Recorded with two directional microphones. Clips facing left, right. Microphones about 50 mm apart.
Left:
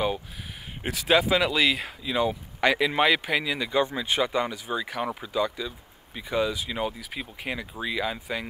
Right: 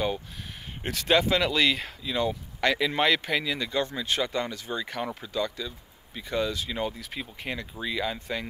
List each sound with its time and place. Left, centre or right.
0.8 s speech: centre